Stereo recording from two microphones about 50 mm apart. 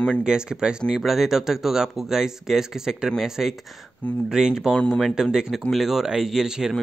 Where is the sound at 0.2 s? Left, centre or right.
Centre.